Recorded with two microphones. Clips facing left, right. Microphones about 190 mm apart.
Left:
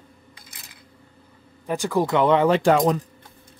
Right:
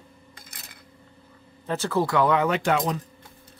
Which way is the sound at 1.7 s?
15° left (ahead or behind).